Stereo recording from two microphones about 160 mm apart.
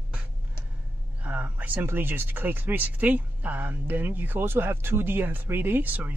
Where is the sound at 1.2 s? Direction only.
10° right (ahead or behind).